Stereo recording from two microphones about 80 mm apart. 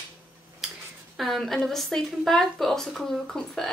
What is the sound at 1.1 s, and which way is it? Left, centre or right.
A woman's voice, centre.